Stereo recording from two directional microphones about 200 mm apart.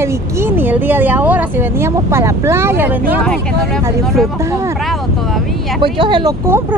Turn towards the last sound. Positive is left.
turn(degrees=-20)  # may be behind; listen again after turning